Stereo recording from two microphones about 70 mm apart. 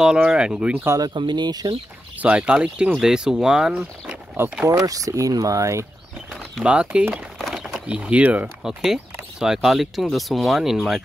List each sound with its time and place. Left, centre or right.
0.0 s speech: centre
1.0 s speech: right
2.1 s speech: centre
3.7 s speech: centre
4.4 s speech: right
4.8 s speech: right
6.6 s speech: centre
7.3 s a sound: centre
7.7 s speech: centre
8.6 s speech: centre